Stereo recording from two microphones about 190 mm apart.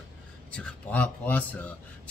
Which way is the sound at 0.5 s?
5° left (ahead or behind).